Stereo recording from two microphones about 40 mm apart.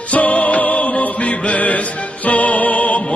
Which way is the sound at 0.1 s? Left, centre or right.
Left.